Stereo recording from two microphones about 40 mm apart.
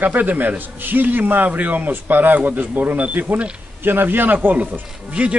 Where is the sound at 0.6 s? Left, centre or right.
Right.